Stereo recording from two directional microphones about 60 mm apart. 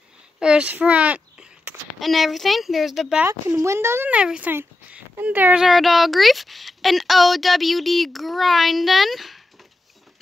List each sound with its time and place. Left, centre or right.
0.4 s a sound: centre
2.0 s speech: centre
3.5 s speech: right
4.1 s speech: centre
5.6 s speech: centre